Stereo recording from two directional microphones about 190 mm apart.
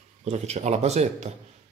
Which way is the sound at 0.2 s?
35° right (ahead or behind).